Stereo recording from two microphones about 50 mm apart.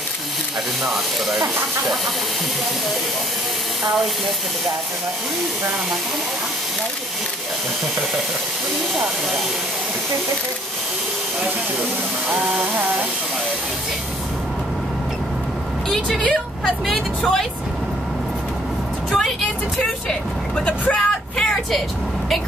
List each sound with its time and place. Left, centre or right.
0.8 s speech: centre
12.3 s a sound: centre
15.9 s speech: centre
19.0 s vehicle: centre
20.1 s speech: centre
20.9 s vehicle: centre